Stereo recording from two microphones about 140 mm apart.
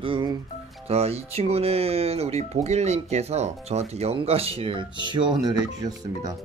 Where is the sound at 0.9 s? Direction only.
45° right (ahead or behind).